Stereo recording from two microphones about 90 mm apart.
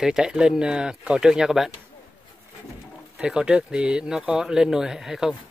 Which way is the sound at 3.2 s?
10° right (ahead or behind).